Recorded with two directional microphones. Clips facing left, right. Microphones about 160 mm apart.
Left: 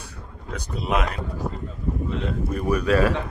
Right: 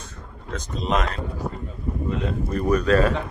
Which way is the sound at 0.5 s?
10° left (ahead or behind).